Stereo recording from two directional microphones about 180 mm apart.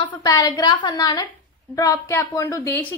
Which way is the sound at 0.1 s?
20° left (ahead or behind).